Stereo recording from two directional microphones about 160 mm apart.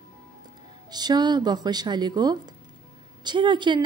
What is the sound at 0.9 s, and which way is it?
Speech, 25° right (ahead or behind).